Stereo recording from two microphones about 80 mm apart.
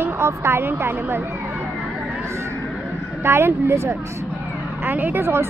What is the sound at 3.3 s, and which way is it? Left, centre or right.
A woman's voice, right.